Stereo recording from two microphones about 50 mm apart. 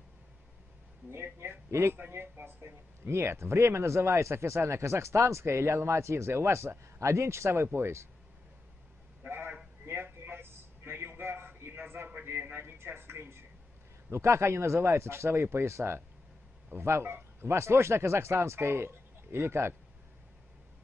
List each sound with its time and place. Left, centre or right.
1.1 s a man's voice: right
1.7 s a man's voice: right
2.4 s a man's voice: right
9.8 s a sound: right
12.7 s a sound: right
14.1 s a man's voice: right